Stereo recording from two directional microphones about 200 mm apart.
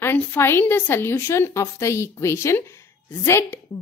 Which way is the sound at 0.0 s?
10° left (ahead or behind).